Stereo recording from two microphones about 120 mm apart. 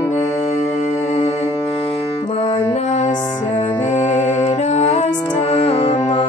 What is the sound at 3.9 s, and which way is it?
Music, 70° left (ahead or behind).